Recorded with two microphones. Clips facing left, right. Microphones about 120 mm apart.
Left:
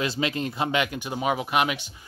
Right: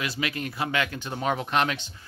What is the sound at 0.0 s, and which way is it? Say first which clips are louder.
Speech: left 4 dB; 25° left (ahead or behind).